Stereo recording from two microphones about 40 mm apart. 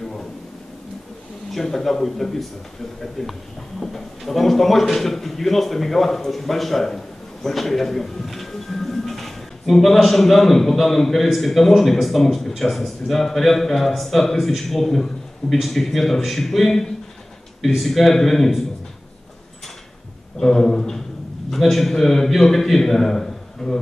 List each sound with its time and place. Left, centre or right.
1.5 s a man's voice: centre
20.3 s a man's voice: centre
21.5 s a man's voice: centre